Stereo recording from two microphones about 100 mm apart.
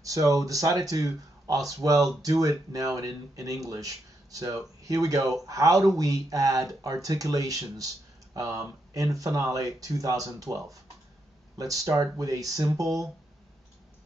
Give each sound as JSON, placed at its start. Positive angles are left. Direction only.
{"t": 0.0, "sound": "speech", "side_deg": -35}